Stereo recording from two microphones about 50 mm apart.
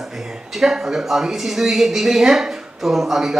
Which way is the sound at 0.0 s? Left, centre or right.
Centre.